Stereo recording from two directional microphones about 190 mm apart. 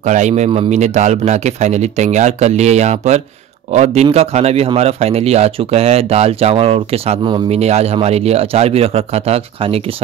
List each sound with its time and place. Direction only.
0.0 s a man's voice: 40° right (ahead or behind)